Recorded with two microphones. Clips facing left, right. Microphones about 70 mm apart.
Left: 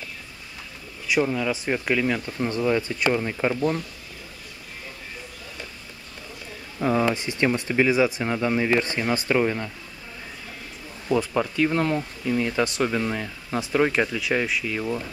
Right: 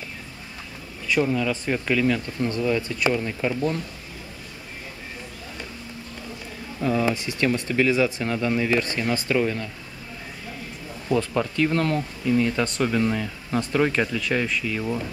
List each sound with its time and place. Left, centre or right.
1.0 s speech: centre
6.8 s a sound: left
7.2 s speech: left
11.1 s speech: centre